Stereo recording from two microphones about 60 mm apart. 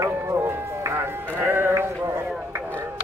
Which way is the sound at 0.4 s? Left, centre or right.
Right.